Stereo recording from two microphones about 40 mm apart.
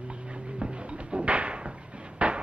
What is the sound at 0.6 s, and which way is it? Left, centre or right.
Music, right.